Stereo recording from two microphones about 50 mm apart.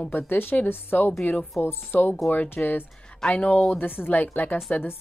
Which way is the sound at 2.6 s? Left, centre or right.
Left.